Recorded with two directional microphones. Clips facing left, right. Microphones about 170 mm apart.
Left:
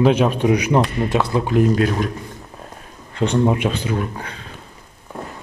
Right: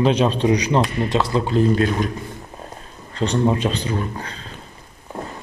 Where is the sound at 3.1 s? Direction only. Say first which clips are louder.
Left 2 dB; 15° left (ahead or behind).